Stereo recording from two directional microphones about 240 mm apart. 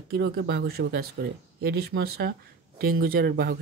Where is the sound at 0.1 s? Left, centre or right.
Right.